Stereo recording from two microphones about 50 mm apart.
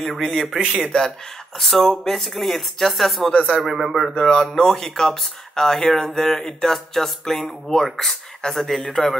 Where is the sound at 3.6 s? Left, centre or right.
Centre.